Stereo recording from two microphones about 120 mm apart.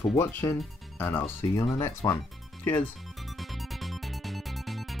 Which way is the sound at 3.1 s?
Centre (ahead or behind).